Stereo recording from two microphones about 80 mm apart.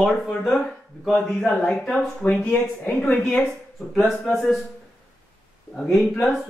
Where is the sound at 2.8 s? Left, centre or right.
Left.